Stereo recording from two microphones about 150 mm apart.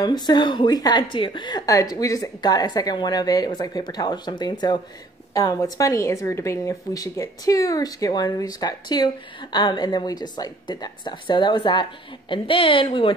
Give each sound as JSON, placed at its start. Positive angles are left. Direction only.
{"t": 0.0, "sound": "a woman's voice", "side_deg": 30}